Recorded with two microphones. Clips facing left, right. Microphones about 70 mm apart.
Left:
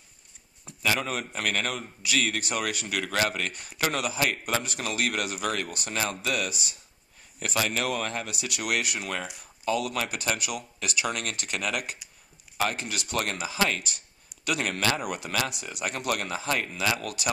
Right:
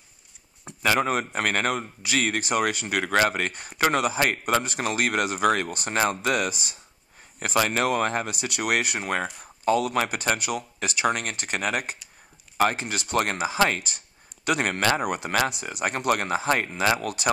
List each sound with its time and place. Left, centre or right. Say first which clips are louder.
0.8 s a man's voice: right 5 dB; right